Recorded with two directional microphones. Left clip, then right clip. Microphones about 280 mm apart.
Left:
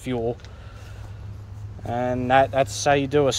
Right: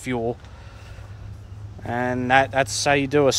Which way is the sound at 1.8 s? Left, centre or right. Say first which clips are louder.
Even; centre.